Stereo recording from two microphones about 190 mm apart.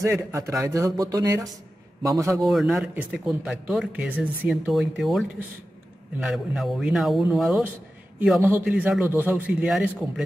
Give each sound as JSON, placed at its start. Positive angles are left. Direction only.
{"t": 0.0, "sound": "a man's voice", "side_deg": -15}
{"t": 2.4, "sound": "a man's voice", "side_deg": 0}